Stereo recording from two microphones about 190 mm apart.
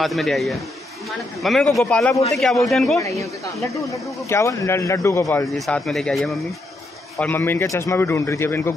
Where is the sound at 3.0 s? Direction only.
15° left (ahead or behind).